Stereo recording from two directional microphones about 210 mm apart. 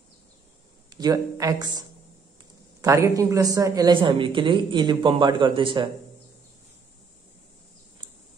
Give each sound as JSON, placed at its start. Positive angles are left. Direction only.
{"t": 0.9, "sound": "a man's voice", "side_deg": -15}